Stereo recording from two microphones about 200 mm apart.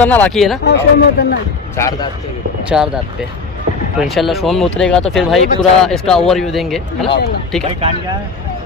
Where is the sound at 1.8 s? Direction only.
20° left (ahead or behind).